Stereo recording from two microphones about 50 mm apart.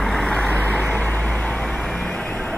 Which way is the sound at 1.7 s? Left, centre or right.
Centre.